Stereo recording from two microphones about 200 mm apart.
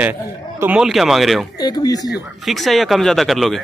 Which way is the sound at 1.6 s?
20° left (ahead or behind).